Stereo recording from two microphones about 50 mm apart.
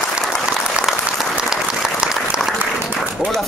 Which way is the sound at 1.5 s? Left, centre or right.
Centre.